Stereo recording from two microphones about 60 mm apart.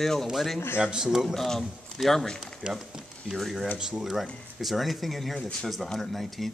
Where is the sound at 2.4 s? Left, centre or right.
Centre.